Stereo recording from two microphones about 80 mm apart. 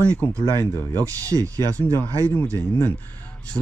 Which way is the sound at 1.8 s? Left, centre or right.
Left.